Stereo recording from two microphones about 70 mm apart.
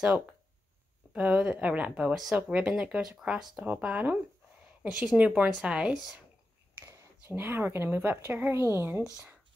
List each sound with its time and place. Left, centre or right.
0.0 s a woman's voice: centre
2.1 s a woman's voice: centre
3.6 s a woman's voice: right
6.9 s a sound: right
7.3 s speech: right